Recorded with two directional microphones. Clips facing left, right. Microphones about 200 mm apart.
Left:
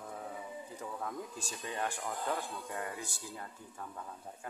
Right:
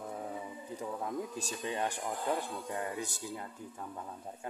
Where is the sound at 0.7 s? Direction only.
20° right (ahead or behind).